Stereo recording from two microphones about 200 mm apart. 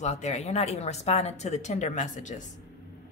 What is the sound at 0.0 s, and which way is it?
Speech, 35° left (ahead or behind).